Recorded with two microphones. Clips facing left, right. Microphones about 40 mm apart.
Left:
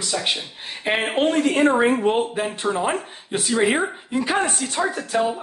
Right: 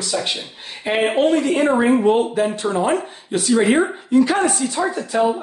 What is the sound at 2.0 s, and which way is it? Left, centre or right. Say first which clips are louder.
Speech: right 4 dB; centre.